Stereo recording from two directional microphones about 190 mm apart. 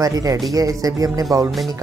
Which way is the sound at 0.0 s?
20° right (ahead or behind).